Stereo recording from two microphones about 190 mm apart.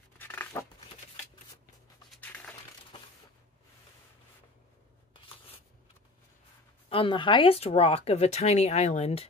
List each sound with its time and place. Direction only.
0.2 s a sound: 10° left (ahead or behind)
2.0 s crushing: 10° left (ahead or behind)
6.9 s speech: 25° left (ahead or behind)